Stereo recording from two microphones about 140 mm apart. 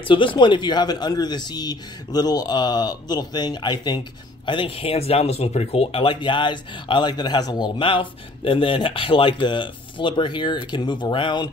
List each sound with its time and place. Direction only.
0.0 s speech: 35° left (ahead or behind)